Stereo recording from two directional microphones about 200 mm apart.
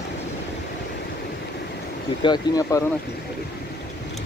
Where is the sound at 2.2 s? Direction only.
20° left (ahead or behind).